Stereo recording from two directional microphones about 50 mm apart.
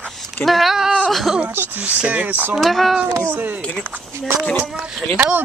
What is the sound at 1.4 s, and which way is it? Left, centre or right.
Speech, right.